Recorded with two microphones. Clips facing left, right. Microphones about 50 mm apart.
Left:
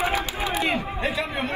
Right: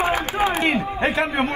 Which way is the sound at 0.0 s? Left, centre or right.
Right.